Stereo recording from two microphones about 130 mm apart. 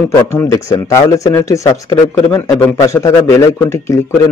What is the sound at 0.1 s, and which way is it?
Speech, 20° left (ahead or behind).